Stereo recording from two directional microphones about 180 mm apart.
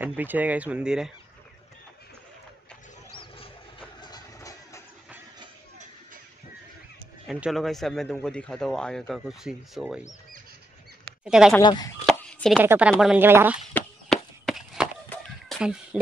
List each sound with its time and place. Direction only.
0.0 s speech: 10° right (ahead or behind)
4.0 s music: 20° left (ahead or behind)
7.2 s speech: 5° right (ahead or behind)
11.2 s speech: 5° right (ahead or behind)
11.6 s speech: 25° left (ahead or behind)
12.1 s chopping: 5° left (ahead or behind)
12.5 s speech: 5° right (ahead or behind)
13.7 s chop: centre (ahead or behind)
15.5 s a sound: centre (ahead or behind)